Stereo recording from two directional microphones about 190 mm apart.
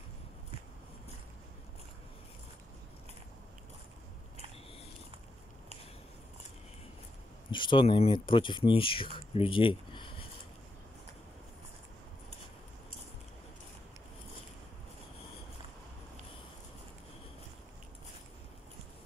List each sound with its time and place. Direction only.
7.5 s speech: 25° left (ahead or behind)